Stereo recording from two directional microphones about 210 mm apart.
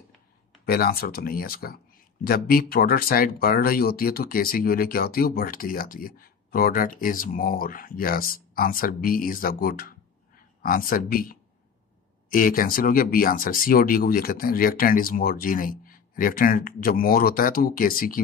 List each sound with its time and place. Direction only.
0.7 s speech: 45° left (ahead or behind)